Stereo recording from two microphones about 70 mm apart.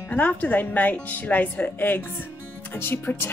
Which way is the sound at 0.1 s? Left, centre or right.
Left.